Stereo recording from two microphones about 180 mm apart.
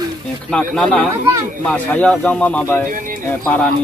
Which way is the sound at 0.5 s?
5° left (ahead or behind).